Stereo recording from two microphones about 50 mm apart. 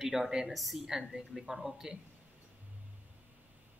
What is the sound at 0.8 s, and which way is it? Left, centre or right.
Speech, centre.